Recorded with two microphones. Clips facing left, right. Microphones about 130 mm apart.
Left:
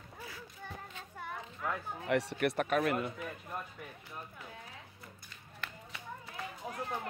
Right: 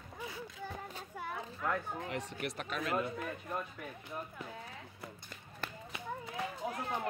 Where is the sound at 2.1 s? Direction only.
65° left (ahead or behind).